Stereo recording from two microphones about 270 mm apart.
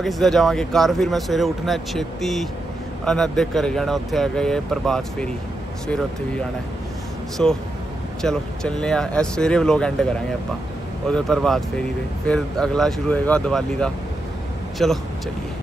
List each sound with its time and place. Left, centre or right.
0.0 s speech: centre
7.4 s speech: centre
11.1 s speech: centre